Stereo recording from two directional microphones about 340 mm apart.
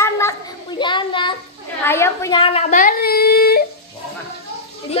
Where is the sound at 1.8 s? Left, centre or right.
Centre; by 3.6 s left.